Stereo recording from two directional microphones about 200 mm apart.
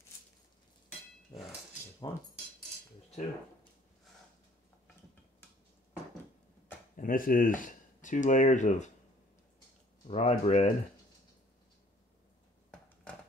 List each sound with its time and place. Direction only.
2.1 s speech: 25° left (ahead or behind)
7.0 s speech: 45° left (ahead or behind)
10.0 s speech: 30° left (ahead or behind)